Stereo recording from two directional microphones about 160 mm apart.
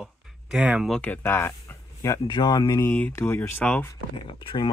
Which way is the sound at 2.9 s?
15° left (ahead or behind).